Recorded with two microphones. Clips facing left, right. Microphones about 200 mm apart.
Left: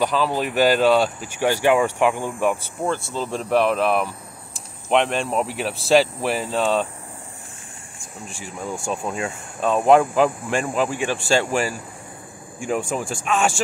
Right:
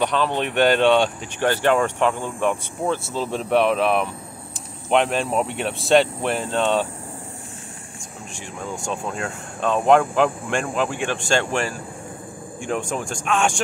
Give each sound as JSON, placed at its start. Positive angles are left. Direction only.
{"t": 0.0, "sound": "speech", "side_deg": 5}
{"t": 8.0, "sound": "speech", "side_deg": 5}